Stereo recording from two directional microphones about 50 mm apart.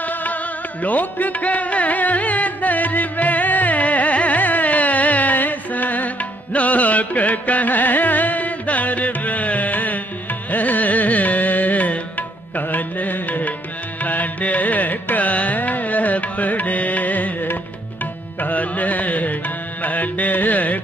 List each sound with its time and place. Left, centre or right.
0.0 s music: left
14.0 s carnatic music: left
18.4 s music: left